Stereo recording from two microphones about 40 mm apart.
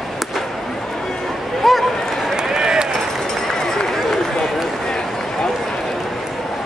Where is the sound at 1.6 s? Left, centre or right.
Centre.